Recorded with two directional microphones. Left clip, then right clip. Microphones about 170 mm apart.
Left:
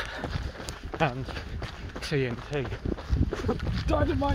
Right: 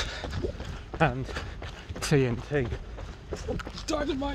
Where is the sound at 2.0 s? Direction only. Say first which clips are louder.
Right 3 dB; 80° right.